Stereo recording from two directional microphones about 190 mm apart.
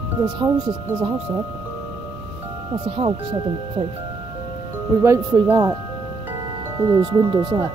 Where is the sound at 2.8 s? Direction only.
30° right (ahead or behind).